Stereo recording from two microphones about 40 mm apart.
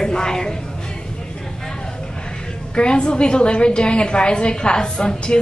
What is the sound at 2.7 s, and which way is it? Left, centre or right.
A woman's voice, left.